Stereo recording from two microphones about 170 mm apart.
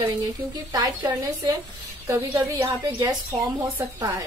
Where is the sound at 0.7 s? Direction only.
20° right (ahead or behind).